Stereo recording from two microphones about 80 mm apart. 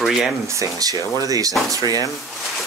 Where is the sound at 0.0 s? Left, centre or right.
Centre.